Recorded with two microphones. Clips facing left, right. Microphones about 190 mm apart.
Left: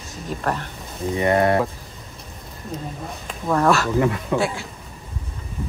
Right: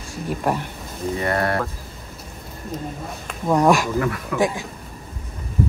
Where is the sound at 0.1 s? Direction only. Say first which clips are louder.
Right 3 dB; 10° right (ahead or behind).